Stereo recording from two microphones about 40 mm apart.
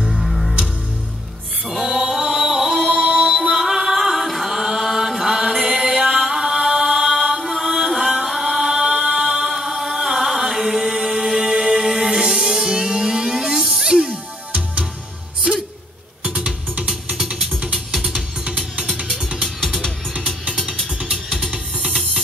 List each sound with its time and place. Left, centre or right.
0.0 s music: centre
1.7 s music: centre
3.3 s music: right
3.5 s chant: centre
7.5 s music: centre
14.0 s music: right
16.3 s music: centre
17.9 s music: centre
21.7 s music: right